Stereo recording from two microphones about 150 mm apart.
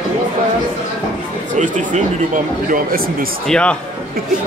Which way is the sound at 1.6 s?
60° right (ahead or behind).